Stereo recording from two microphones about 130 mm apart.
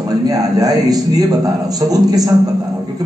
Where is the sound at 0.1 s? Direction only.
30° right (ahead or behind).